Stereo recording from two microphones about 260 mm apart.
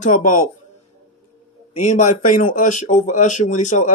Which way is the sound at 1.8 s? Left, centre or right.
Left.